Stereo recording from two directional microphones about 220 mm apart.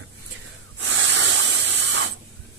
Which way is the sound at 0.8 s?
55° right (ahead or behind).